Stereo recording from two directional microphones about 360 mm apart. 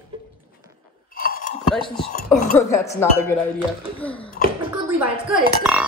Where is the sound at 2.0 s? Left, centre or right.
Centre.